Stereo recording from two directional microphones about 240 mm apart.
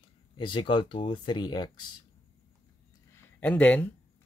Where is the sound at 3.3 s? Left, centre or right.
Centre.